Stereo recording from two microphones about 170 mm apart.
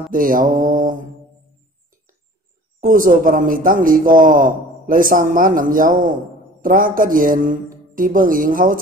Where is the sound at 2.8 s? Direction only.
55° right (ahead or behind).